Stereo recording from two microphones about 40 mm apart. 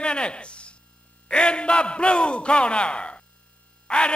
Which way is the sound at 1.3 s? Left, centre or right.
Left.